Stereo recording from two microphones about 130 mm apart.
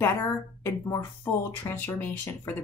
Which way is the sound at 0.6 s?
20° left (ahead or behind).